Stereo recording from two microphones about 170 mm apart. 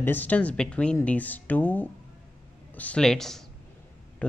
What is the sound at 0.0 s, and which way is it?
Speech, 10° left (ahead or behind).